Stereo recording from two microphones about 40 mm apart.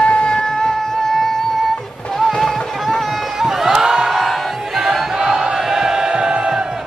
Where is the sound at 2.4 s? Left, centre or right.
Centre.